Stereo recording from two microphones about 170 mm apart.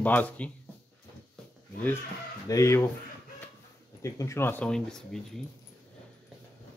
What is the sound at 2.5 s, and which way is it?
Speech, 15° left (ahead or behind).